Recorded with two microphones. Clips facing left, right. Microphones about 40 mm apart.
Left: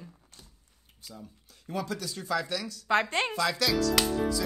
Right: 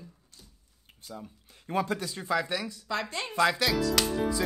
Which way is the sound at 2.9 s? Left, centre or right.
Left.